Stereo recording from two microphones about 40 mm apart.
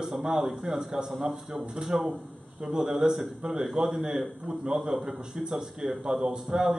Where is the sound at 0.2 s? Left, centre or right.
Centre.